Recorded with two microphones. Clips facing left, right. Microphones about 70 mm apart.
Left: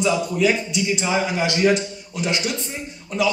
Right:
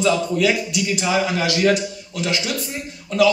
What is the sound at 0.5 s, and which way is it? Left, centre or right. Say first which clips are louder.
Speech: right 1 dB; left.